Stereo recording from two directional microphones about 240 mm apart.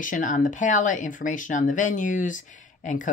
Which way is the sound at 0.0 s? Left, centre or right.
Left.